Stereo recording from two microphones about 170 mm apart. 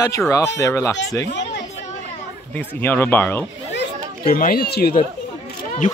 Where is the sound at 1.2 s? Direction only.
85° left.